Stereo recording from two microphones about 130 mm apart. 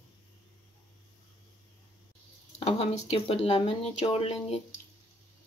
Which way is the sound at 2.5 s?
55° left (ahead or behind).